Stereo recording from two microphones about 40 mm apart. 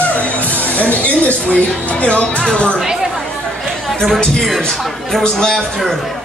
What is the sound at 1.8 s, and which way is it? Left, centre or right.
Speech, left.